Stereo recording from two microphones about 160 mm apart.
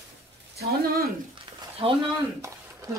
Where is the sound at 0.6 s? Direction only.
75° right (ahead or behind).